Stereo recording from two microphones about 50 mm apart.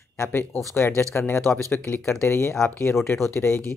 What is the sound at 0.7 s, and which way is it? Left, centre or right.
Speech, left.